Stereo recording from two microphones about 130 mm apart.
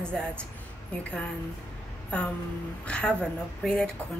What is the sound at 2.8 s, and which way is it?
A woman's voice, 10° left (ahead or behind).